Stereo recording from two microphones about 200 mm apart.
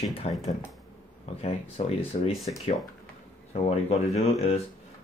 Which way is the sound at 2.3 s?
Centre (ahead or behind).